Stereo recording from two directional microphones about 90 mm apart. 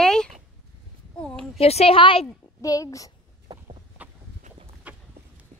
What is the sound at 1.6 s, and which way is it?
Speech, 80° left.